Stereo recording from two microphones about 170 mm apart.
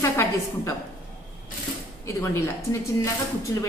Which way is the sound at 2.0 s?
15° left (ahead or behind).